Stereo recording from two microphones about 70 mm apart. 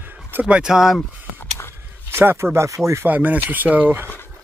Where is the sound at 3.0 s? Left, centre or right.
Right.